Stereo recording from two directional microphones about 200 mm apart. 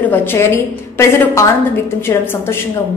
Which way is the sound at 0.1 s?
10° left (ahead or behind).